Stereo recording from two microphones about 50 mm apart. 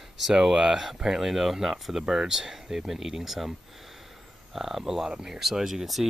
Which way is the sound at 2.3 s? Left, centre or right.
Centre.